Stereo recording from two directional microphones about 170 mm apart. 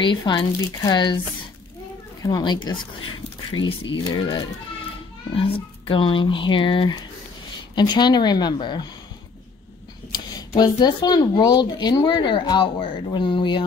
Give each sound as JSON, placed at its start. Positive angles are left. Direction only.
{"t": 0.0, "sound": "speech", "side_deg": 25}
{"t": 2.2, "sound": "speech", "side_deg": 25}
{"t": 4.0, "sound": "speech", "side_deg": 25}
{"t": 10.1, "sound": "speech", "side_deg": 25}